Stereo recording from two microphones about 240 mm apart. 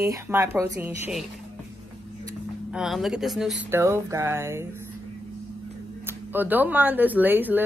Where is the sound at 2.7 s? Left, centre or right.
Centre.